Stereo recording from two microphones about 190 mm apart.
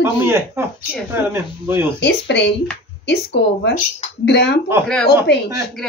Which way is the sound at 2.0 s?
65° left (ahead or behind).